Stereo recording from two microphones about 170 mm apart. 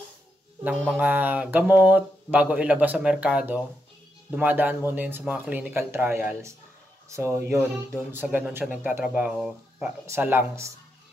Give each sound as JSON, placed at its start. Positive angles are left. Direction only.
{"t": 0.7, "sound": "mantra", "side_deg": -10}